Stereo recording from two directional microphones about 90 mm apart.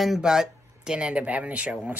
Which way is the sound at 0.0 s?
5° right (ahead or behind).